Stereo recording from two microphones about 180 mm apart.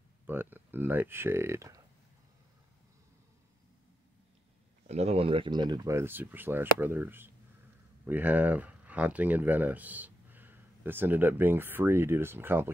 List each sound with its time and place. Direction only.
0.3 s speech: 10° right (ahead or behind)
4.8 s speech: 35° right (ahead or behind); by 12.7 s 10° right (ahead or behind)